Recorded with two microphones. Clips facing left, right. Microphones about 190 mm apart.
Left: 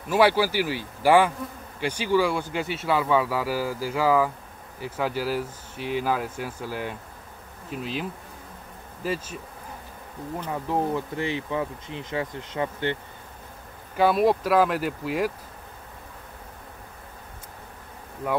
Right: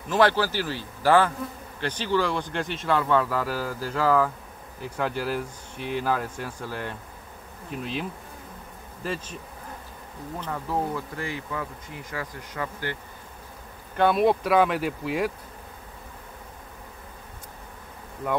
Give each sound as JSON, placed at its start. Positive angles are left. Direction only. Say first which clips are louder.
{"t": 0.1, "sound": "speech", "louder": "left 1 dB", "side_deg": 10}
{"t": 10.4, "sound": "speech", "louder": "left 2 dB", "side_deg": 15}
{"t": 13.9, "sound": "speech", "louder": "even", "side_deg": 0}